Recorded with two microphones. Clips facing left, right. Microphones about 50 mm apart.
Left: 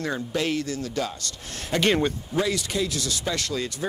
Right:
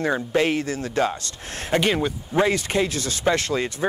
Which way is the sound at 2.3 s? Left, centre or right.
Right.